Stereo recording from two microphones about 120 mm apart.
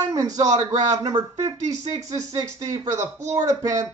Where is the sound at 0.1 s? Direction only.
30° right (ahead or behind).